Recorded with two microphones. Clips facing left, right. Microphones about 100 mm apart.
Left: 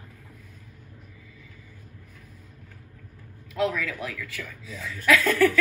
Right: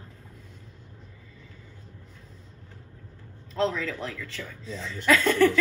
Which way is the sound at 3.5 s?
30° right (ahead or behind).